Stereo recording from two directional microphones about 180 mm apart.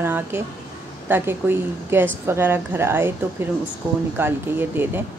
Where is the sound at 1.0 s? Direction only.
10° right (ahead or behind).